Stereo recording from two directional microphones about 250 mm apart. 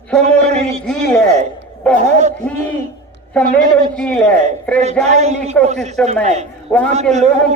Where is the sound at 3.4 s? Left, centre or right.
Centre.